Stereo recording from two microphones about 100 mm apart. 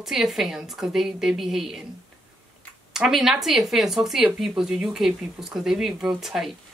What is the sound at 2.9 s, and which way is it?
Speech, 5° right (ahead or behind).